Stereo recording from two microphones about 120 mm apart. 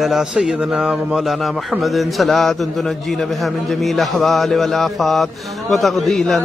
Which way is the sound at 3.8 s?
Centre (ahead or behind).